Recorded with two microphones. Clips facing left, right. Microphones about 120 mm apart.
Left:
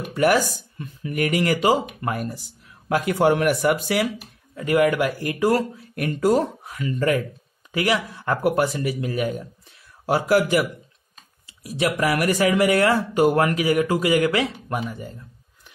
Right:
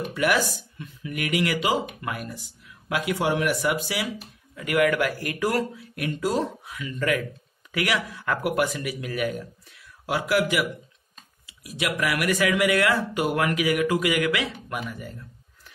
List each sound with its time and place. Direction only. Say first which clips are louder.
0.1 s speech: left 6 dB; 40° left (ahead or behind)
4.6 s speech: left 3 dB; 30° left (ahead or behind)
5.8 s speech: left 4 dB; 45° left (ahead or behind); by 9.8 s 25° left (ahead or behind)
10.0 s speech: left 5 dB; 40° left (ahead or behind)